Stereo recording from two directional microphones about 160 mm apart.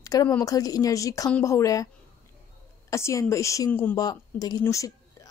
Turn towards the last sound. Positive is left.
turn(degrees=20)  # may be behind; listen again after turning